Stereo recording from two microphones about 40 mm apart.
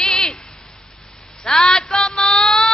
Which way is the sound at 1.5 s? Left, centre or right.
Centre.